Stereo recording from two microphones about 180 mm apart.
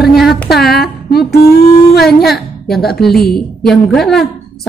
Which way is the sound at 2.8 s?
60° left (ahead or behind).